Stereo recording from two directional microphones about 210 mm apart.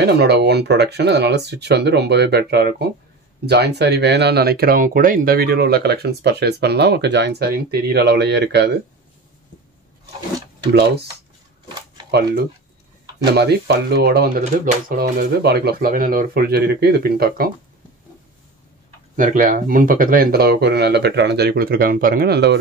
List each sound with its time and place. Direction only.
0.0 s speech: 50° right (ahead or behind)
10.7 s speech: 55° right (ahead or behind)
13.3 s speech: 50° right (ahead or behind)
14.4 s speech: 35° right (ahead or behind)
19.1 s speech: 40° right (ahead or behind)